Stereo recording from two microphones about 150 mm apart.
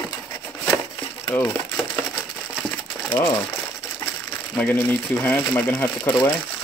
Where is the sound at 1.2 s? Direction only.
15° left (ahead or behind).